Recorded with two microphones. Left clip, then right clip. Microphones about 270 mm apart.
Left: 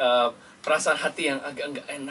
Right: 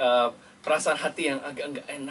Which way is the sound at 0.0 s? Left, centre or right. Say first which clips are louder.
Left 1 dB; centre.